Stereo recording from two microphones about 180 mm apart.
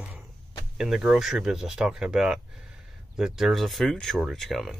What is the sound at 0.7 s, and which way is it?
Speech, 5° right (ahead or behind).